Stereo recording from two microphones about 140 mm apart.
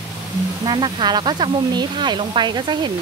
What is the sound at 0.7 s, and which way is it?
Speech, 35° right (ahead or behind).